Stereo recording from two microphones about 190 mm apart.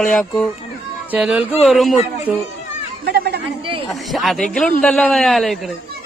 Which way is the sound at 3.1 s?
60° right (ahead or behind).